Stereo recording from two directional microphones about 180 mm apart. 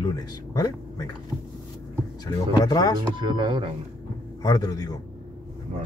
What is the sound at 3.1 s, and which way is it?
Speech, 25° right (ahead or behind).